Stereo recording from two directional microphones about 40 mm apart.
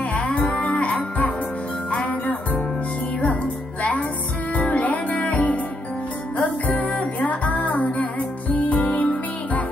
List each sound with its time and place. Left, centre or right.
0.1 s music: left
4.6 s music: left